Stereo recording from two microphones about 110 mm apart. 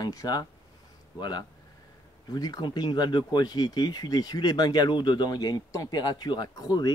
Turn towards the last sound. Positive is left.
turn(degrees=35)  # may be behind; listen again after turning